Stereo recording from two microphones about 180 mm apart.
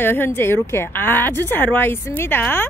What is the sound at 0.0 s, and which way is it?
Speech, 10° left (ahead or behind).